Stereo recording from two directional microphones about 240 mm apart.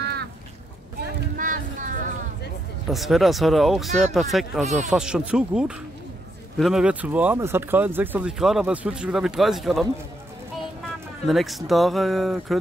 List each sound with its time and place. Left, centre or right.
0.0 s duck: right
1.3 s a sound: right
2.9 s speech: centre
4.6 s speech: right
4.9 s speech: centre
11.2 s speech: centre